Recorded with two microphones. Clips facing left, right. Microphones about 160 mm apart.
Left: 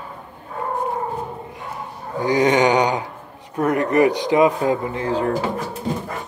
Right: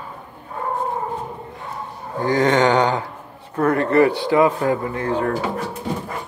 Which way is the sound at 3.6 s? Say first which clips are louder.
Right 1 dB; 15° left (ahead or behind).